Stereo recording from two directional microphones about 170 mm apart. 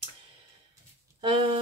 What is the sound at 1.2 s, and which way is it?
Speech, 30° right (ahead or behind).